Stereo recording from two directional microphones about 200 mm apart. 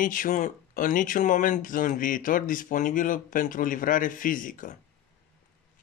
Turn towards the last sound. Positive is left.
turn(degrees=40)  # may be behind; listen again after turning